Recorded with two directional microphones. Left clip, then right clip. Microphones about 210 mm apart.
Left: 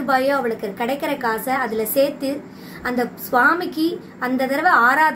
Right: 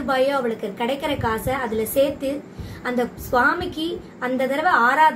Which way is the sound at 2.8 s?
5° left (ahead or behind).